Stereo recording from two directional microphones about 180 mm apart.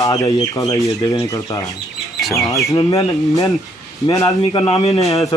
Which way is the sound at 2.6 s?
20° left (ahead or behind).